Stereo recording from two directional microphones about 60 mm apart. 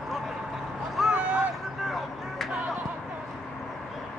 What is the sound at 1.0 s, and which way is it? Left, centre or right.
Vehicle, centre.